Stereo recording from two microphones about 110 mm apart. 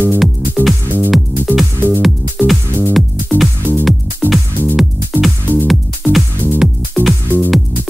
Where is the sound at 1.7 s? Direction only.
20° right (ahead or behind).